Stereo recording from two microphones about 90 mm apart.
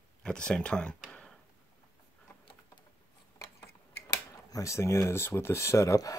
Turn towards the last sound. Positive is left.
turn(degrees=35)  # may be behind; listen again after turning